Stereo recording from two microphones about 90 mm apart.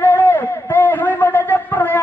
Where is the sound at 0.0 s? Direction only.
20° left (ahead or behind).